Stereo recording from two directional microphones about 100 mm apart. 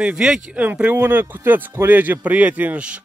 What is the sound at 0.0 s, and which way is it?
Speech, 5° right (ahead or behind).